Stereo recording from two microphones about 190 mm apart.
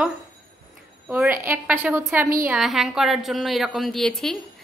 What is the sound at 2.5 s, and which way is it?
A woman's voice, centre (ahead or behind).